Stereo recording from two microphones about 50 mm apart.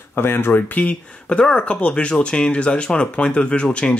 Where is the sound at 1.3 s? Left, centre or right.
Centre.